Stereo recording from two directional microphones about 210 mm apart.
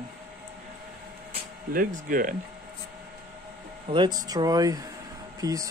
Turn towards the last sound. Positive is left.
turn(degrees=-15)  # may be behind; listen again after turning